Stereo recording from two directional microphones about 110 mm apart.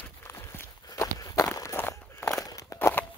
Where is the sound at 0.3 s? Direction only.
25° left (ahead or behind).